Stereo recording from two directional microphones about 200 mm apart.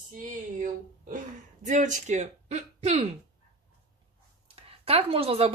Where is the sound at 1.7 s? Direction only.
35° right (ahead or behind).